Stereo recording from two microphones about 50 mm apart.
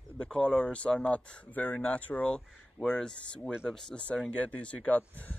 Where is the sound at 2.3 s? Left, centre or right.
Centre.